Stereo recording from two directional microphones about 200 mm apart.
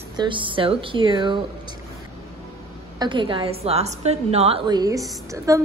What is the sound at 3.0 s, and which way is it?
A woman's voice, 25° right (ahead or behind).